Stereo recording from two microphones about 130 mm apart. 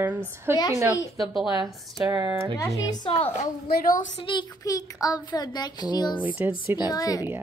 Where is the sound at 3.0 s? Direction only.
45° left (ahead or behind).